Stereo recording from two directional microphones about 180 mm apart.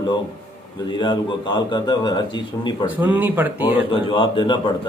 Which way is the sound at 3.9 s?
30° left (ahead or behind).